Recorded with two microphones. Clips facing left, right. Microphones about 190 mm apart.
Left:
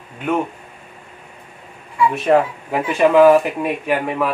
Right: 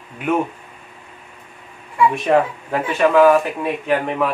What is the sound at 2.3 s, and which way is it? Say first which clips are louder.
Speech: left 2 dB; centre (ahead or behind).